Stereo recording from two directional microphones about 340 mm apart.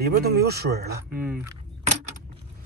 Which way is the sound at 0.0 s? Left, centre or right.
Right.